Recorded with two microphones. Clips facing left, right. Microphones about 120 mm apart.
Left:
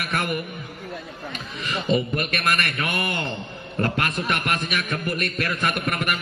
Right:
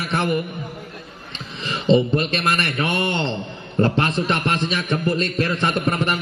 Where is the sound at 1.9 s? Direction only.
25° right (ahead or behind).